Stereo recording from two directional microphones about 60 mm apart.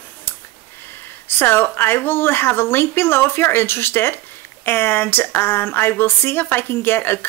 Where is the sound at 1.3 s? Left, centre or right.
Left.